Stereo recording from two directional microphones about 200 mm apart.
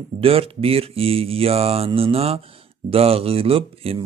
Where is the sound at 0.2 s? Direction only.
30° right (ahead or behind).